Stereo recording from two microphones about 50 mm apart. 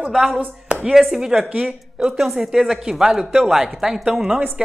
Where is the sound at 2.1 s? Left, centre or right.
Centre.